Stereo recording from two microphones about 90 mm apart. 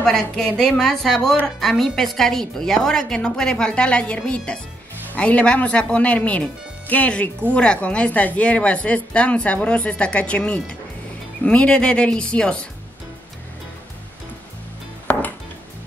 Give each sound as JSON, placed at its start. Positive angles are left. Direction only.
{"t": 0.0, "sound": "a woman's voice", "side_deg": 5}
{"t": 15.1, "sound": "music", "side_deg": 25}